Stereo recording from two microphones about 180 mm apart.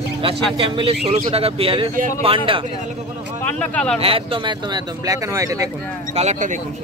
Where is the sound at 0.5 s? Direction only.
30° right (ahead or behind).